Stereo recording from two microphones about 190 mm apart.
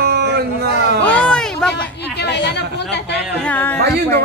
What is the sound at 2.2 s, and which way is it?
Speech, 65° left (ahead or behind).